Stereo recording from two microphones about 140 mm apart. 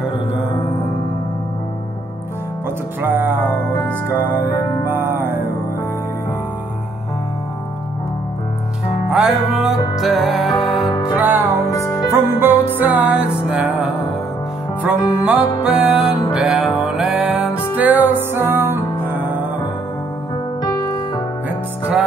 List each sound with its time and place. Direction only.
3.0 s music: 15° right (ahead or behind)
4.8 s music: 15° right (ahead or behind)
9.1 s music: 5° right (ahead or behind)
10.9 s music: 30° left (ahead or behind)
11.1 s music: 10° right (ahead or behind)
11.7 s music: 20° left (ahead or behind)
12.1 s music: 15° right (ahead or behind)